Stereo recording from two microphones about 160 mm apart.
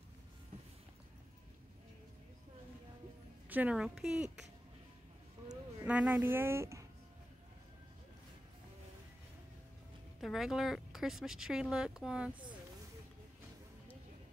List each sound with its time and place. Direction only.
3.4 s speech: 10° right (ahead or behind)
5.9 s speech: 10° right (ahead or behind)
10.2 s speech: centre (ahead or behind)